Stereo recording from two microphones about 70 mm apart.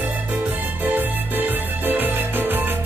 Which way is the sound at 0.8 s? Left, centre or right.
Right.